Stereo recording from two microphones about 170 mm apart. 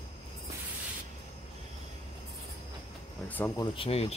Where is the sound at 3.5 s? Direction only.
30° left (ahead or behind).